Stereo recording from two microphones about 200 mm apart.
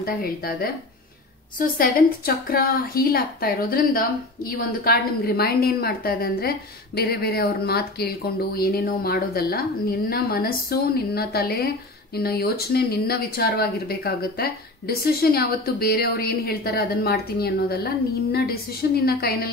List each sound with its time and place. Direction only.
0.0 s a woman's voice: 45° left (ahead or behind)